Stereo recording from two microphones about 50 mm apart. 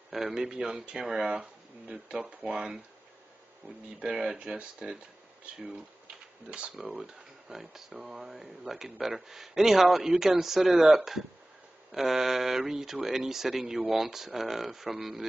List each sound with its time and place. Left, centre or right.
0.1 s speech: centre
4.3 s speech: centre
6.5 s speech: right; by 15.2 s centre